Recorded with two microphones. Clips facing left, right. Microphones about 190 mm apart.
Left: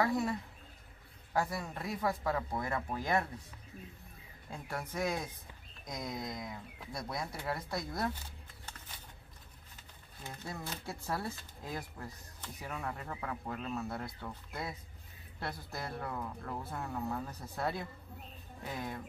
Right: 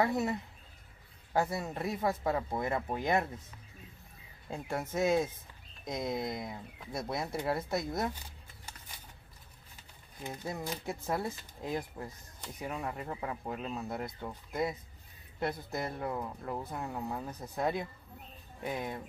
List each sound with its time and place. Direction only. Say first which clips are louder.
0.0 s speech: right 2 dB; 20° right (ahead or behind)
4.5 s speech: right 5 dB; 25° right (ahead or behind)
10.2 s speech: right 5 dB; 15° right (ahead or behind)